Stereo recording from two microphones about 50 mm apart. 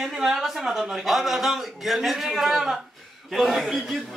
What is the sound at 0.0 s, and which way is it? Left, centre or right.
A man's voice, centre.